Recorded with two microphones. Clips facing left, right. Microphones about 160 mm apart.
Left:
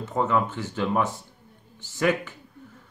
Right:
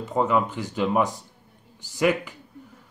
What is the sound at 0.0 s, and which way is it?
Speech, 10° right (ahead or behind).